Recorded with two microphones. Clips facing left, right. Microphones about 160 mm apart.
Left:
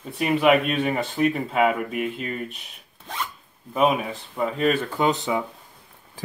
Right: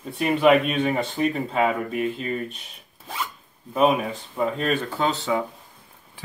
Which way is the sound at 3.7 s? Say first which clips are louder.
Right 1 dB; centre (ahead or behind).